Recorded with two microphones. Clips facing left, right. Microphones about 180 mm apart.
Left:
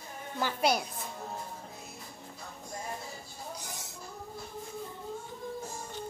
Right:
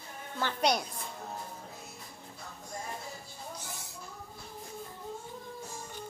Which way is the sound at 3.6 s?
15° left (ahead or behind).